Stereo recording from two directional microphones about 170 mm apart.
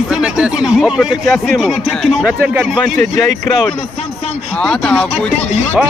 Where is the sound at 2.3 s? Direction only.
10° right (ahead or behind).